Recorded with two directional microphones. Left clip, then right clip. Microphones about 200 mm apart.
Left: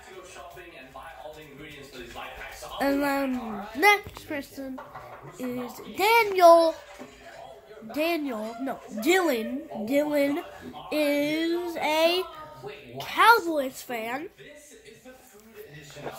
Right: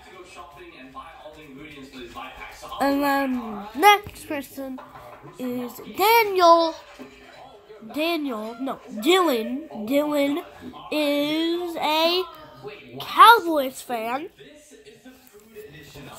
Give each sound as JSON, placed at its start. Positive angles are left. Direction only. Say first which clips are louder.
{"t": 2.8, "sound": "a woman's voice", "louder": "right 4 dB", "side_deg": -5}
{"t": 6.3, "sound": "a child's voice", "louder": "even", "side_deg": 20}
{"t": 7.9, "sound": "a woman's voice", "louder": "right 2 dB", "side_deg": 0}
{"t": 11.9, "sound": "a child's voice", "louder": "right 2 dB", "side_deg": 15}
{"t": 12.9, "sound": "a woman's voice", "louder": "right 6 dB", "side_deg": 0}